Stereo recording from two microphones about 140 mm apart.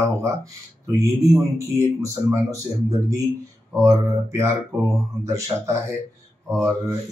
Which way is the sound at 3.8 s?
20° right (ahead or behind).